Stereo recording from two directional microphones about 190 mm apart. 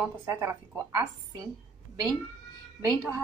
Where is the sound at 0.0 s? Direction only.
15° right (ahead or behind).